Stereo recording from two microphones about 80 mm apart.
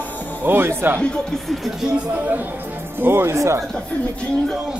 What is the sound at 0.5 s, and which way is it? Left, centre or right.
Speech, right.